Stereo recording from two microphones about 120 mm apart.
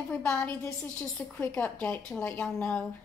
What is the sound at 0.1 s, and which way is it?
A woman's voice, 5° left (ahead or behind).